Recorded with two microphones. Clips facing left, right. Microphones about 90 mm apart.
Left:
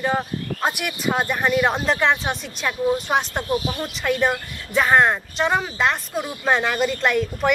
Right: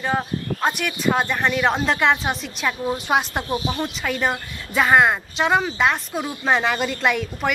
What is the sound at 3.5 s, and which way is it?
Speech, 25° right (ahead or behind).